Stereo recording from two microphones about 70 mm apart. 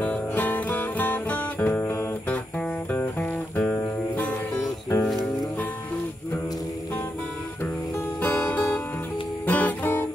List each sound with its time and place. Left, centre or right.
0.0 s music: left
2.9 s music: left
5.0 s music: centre
8.2 s music: left
9.5 s guitar: left